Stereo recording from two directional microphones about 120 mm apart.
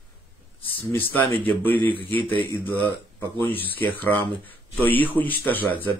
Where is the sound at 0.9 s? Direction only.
15° left (ahead or behind).